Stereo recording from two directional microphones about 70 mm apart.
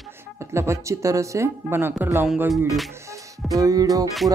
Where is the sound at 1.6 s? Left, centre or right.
Right.